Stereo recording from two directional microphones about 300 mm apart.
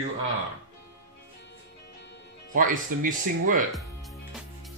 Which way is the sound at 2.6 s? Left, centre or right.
Right.